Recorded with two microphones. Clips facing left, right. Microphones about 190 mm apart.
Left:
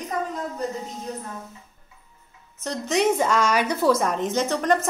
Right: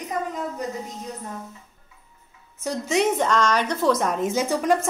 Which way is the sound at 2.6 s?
5° right (ahead or behind).